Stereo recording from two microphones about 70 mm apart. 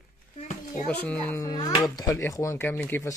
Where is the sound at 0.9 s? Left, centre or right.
Centre.